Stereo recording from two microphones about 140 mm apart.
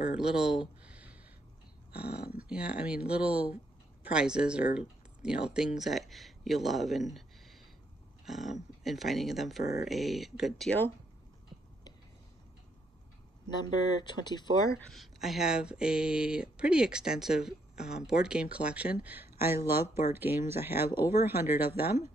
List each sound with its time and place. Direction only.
0.1 s a sound: 5° right (ahead or behind)
2.0 s speech: 10° right (ahead or behind)
14.2 s speech: 30° left (ahead or behind)
14.9 s speech: centre (ahead or behind)